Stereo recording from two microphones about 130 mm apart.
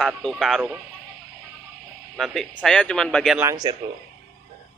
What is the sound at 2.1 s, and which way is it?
Speech, centre (ahead or behind).